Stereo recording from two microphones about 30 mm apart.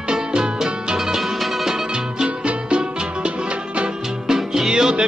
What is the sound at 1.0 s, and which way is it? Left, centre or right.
Music, centre.